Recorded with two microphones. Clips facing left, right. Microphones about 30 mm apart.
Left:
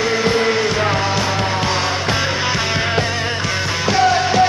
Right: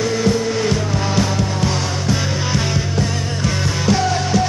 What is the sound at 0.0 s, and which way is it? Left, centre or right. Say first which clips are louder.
Music: left 1 dB; left.